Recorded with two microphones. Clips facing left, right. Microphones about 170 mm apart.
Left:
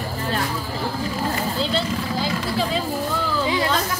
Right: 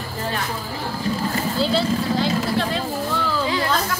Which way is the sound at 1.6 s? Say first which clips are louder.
Right 5 dB; 5° right (ahead or behind).